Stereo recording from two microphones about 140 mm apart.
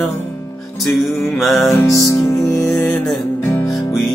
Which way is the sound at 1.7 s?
20° left (ahead or behind).